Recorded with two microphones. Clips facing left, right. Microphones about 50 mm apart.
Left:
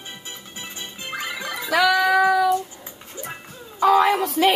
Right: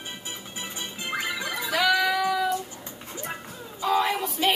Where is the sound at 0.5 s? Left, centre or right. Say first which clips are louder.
Even; centre.